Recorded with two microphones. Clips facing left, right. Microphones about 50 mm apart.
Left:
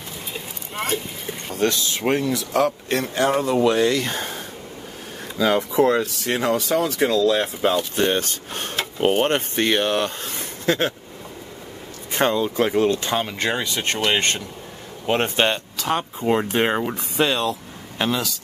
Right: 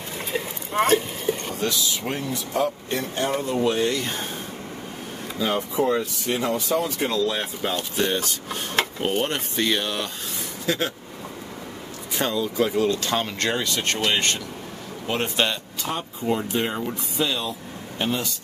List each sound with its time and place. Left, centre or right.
1.6 s speech: left
2.1 s speech: left
5.4 s speech: left
5.8 s speech: left
7.9 s speech: left
12.1 s speech: left
13.1 s speech: centre
15.0 s speech: left
15.8 s speech: left
16.2 s speech: left
17.3 s speech: left